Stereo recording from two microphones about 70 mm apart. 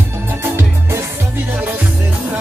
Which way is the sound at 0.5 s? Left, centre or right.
Right.